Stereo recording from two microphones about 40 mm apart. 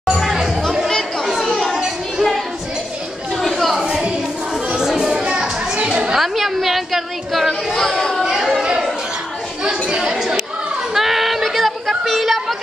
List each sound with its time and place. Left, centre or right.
0.1 s chatter: centre
0.8 s chatter: centre
3.3 s a sound: centre
4.8 s children playing: centre
5.2 s children playing: right
6.1 s a sound: centre
8.2 s chatter: centre
9.7 s chatter: right
11.0 s a sound: centre